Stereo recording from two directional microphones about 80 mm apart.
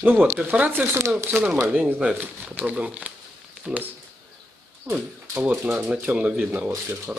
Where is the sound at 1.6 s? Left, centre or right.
Centre.